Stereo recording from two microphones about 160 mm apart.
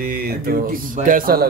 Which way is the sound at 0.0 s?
65° right (ahead or behind).